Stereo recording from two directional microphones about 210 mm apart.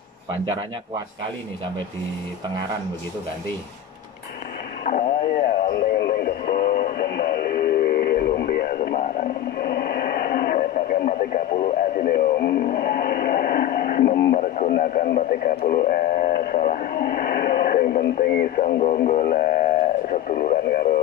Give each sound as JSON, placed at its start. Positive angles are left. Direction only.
{"t": 4.8, "sound": "radio", "side_deg": 40}
{"t": 14.3, "sound": "speech", "side_deg": 40}